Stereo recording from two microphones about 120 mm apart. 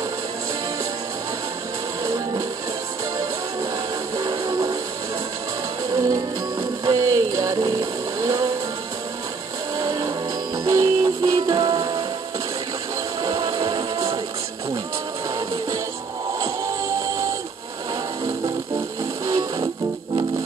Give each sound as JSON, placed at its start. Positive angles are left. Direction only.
{"t": 2.0, "sound": "music", "side_deg": -30}
{"t": 4.2, "sound": "vehicle", "side_deg": -40}
{"t": 5.9, "sound": "music", "side_deg": -30}
{"t": 9.8, "sound": "music", "side_deg": -30}
{"t": 13.2, "sound": "music", "side_deg": -40}
{"t": 16.3, "sound": "music", "side_deg": -30}
{"t": 19.2, "sound": "music", "side_deg": -35}